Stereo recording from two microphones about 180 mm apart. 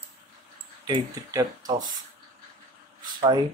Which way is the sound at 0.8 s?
20° right (ahead or behind).